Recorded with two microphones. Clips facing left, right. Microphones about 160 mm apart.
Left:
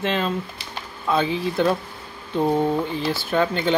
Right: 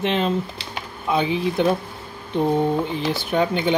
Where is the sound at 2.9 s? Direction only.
20° right (ahead or behind).